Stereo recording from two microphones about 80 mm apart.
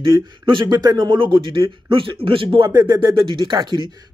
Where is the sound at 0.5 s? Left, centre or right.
Right.